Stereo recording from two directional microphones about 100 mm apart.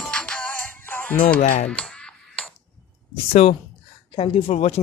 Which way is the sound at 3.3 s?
90° left.